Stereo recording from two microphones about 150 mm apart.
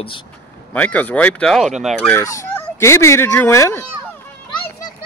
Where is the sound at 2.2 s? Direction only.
20° left (ahead or behind).